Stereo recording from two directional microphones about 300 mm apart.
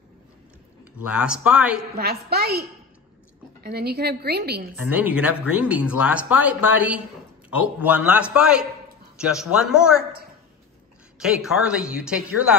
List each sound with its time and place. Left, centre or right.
0.9 s speech: centre
2.0 s a woman's voice: right
3.6 s a woman's voice: right
4.7 s speech: centre
11.1 s speech: centre